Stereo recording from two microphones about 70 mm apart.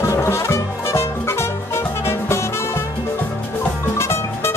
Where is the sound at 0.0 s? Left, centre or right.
Left.